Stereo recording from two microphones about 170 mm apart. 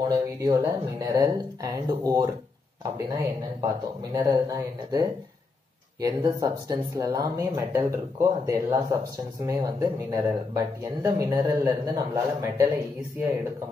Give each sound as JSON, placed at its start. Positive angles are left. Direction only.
{"t": 0.1, "sound": "speech", "side_deg": -20}